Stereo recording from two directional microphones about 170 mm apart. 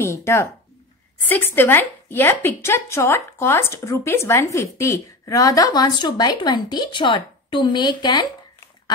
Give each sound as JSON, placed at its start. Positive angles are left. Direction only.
{"t": 0.0, "sound": "a woman's voice", "side_deg": 15}